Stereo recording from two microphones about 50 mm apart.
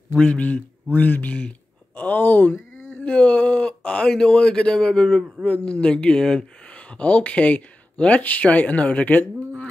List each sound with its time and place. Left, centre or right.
0.3 s speech: left
6.7 s speech: left